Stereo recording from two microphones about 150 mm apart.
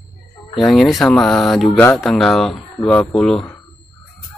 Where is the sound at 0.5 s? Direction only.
Centre (ahead or behind).